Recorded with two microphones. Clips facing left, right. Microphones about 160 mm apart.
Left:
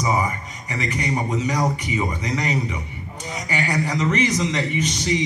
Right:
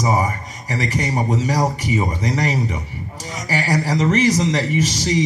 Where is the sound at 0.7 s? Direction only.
40° right (ahead or behind).